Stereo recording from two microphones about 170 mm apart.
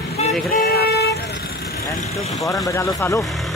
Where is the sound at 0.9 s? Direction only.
70° left (ahead or behind).